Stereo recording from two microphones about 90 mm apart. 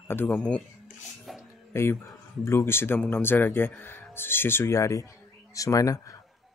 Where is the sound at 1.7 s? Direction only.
30° left (ahead or behind).